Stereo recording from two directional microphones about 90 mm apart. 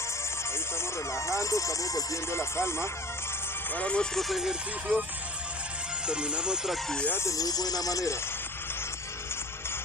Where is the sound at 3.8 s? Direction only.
10° left (ahead or behind).